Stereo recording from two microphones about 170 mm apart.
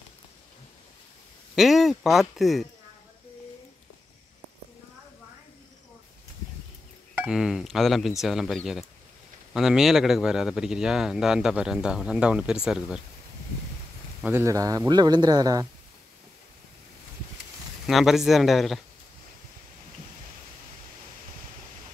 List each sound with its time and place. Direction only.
1.5 s a man's voice: centre (ahead or behind)
7.2 s a man's voice: 5° right (ahead or behind)
14.2 s speech: 15° right (ahead or behind)
17.8 s a man's voice: centre (ahead or behind)